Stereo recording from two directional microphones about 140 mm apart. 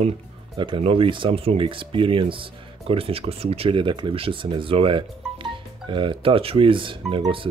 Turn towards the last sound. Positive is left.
turn(degrees=-40)  # may be behind; listen again after turning